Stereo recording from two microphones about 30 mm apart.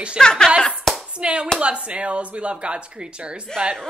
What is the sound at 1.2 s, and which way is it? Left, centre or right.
Speech, right.